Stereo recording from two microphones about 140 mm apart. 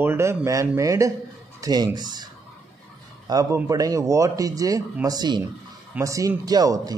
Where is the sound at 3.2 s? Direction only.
20° right (ahead or behind).